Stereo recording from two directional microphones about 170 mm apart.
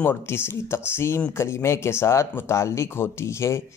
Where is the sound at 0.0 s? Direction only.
15° left (ahead or behind).